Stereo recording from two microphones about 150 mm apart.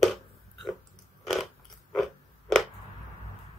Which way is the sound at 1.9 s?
Centre (ahead or behind).